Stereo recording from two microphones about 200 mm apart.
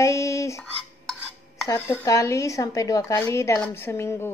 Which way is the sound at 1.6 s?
15° left (ahead or behind).